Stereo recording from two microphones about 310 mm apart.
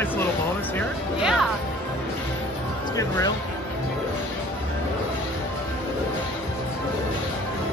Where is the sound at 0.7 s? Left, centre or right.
Centre.